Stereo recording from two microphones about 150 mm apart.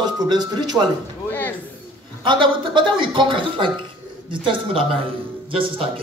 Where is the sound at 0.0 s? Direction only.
25° right (ahead or behind).